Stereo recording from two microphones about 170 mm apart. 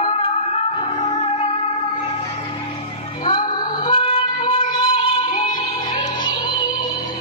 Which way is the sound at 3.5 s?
25° left (ahead or behind).